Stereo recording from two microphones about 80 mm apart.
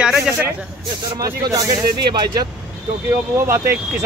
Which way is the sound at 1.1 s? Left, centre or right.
Right.